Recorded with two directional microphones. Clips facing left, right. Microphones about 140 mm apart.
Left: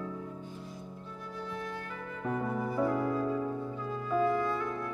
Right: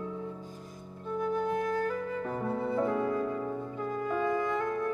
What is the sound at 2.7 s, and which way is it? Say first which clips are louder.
Music: right 1 dB; 25° right (ahead or behind).